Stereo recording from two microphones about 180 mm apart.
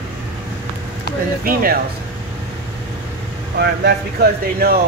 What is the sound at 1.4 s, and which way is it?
Speech, 55° right (ahead or behind).